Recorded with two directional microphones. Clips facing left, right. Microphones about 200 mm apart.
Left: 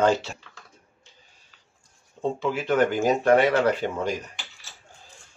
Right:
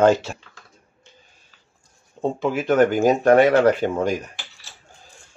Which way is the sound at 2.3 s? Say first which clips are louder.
Right 5 dB; 50° right (ahead or behind).